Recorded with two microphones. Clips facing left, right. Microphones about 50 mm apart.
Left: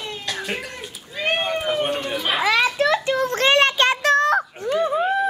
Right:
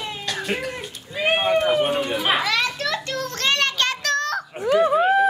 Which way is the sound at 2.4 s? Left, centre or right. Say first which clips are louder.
Left 4 dB; centre.